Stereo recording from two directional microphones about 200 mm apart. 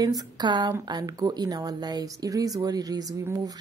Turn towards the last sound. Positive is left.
turn(degrees=-15)  # may be behind; listen again after turning